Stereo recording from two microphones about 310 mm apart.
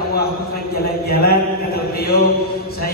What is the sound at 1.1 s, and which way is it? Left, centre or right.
Speech, left.